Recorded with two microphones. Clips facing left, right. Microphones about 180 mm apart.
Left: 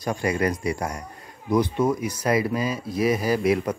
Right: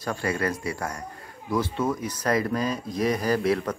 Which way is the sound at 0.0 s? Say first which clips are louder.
Left 3 dB; 15° left (ahead or behind).